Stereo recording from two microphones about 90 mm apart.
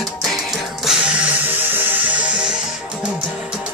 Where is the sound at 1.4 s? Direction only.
20° right (ahead or behind).